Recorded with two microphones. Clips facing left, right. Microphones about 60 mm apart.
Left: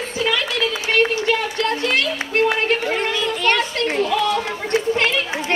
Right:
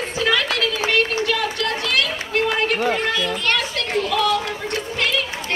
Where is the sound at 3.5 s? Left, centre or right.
Left.